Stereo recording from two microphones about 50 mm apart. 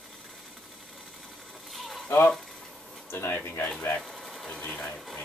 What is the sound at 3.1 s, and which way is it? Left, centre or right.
Speech, left.